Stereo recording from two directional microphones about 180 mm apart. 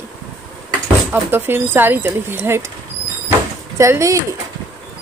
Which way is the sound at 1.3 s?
10° right (ahead or behind).